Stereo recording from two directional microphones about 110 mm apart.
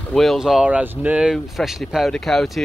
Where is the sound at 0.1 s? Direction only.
Centre (ahead or behind).